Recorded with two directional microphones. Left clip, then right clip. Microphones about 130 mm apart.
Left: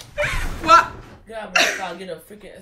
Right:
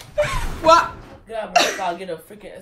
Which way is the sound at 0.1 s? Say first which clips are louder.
Right 2 dB; 35° right (ahead or behind).